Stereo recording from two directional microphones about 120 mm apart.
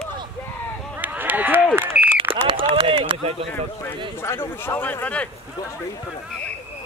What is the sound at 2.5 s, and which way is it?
Run, 50° right (ahead or behind).